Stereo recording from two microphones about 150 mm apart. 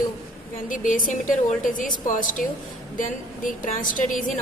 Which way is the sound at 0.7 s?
65° left (ahead or behind).